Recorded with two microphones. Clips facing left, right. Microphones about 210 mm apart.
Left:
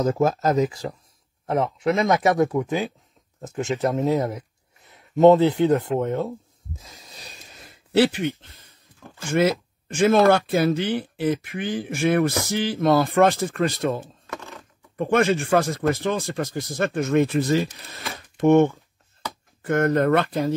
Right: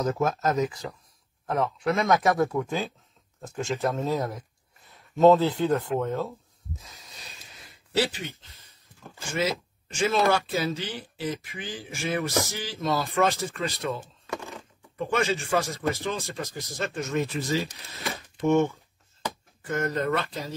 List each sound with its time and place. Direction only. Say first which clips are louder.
0.0 s speech: left 5 dB; 30° left (ahead or behind)
3.9 s speech: left 6 dB; 20° left (ahead or behind)
6.8 s a sound: left 4 dB; 30° left (ahead or behind); by 8.5 s 55° left (ahead or behind)
9.3 s speech: left 8 dB; 55° left (ahead or behind)
14.3 s a sound: right 2 dB; 15° right (ahead or behind)
15.0 s speech: left 6 dB; 55° left (ahead or behind)